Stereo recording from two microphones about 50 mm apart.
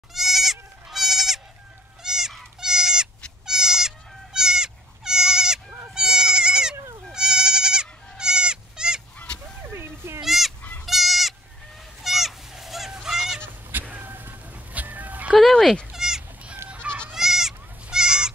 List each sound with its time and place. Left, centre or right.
0.1 s goat: centre
9.7 s a sound: right
10.2 s goat: centre
12.0 s a sound: centre
13.8 s a sound: right
14.7 s dog: right
15.5 s cat: centre
15.9 s goat: centre
16.6 s goose: right
17.1 s goat: centre